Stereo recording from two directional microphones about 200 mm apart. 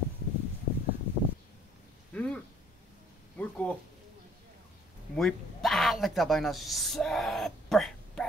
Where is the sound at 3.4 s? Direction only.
5° left (ahead or behind).